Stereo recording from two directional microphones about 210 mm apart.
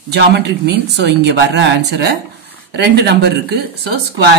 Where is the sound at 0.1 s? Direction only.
50° right (ahead or behind).